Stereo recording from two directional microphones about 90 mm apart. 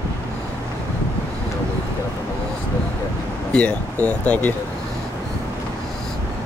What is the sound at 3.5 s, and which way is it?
Speech, 15° left (ahead or behind).